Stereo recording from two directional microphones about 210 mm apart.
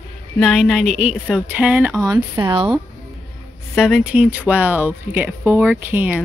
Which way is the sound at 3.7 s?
5° right (ahead or behind).